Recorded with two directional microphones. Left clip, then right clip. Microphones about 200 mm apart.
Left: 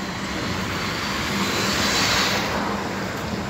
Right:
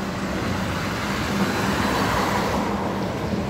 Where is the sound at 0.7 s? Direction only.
50° right (ahead or behind).